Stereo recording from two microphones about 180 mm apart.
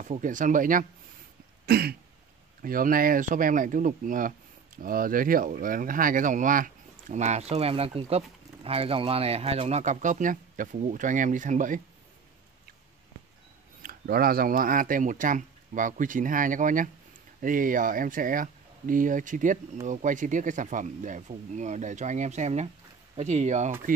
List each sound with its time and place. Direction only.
0.1 s speech: 45° right (ahead or behind)
1.7 s throat clearing: 60° right (ahead or behind)
2.6 s speech: 50° right (ahead or behind)
13.8 s speech: 55° right (ahead or behind); by 23.7 s 40° right (ahead or behind)